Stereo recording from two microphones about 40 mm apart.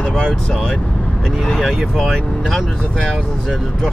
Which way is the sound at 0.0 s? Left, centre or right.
Centre.